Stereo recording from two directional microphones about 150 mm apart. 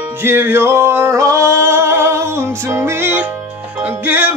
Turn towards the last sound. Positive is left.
turn(degrees=-15)  # may be behind; listen again after turning